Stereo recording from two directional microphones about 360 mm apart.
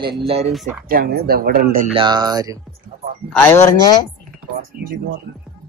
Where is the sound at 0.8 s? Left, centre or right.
Right; by 2.6 s centre.